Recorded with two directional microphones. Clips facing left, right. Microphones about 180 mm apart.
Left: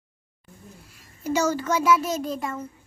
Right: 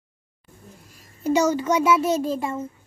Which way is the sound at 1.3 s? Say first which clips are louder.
Right 3 dB; 15° right (ahead or behind).